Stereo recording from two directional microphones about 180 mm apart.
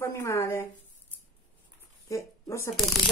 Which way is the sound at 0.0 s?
15° left (ahead or behind).